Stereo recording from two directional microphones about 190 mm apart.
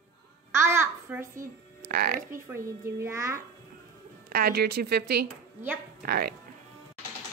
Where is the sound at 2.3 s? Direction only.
15° right (ahead or behind).